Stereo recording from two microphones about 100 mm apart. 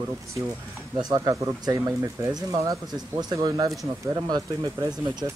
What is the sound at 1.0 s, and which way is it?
Speech, 40° right (ahead or behind).